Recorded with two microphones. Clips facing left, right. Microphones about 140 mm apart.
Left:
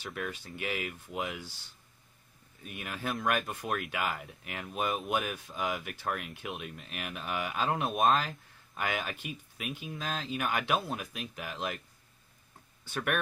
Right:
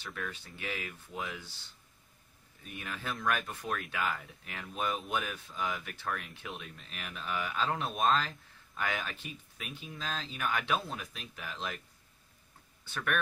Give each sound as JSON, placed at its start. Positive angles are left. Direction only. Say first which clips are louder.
{"t": 0.0, "sound": "speech", "louder": "left 3 dB", "side_deg": 15}
{"t": 2.7, "sound": "speech", "louder": "left 3 dB", "side_deg": 15}
{"t": 12.8, "sound": "speech", "louder": "left 2 dB", "side_deg": 15}